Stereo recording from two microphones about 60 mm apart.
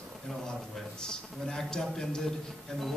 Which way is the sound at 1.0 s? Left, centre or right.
Centre.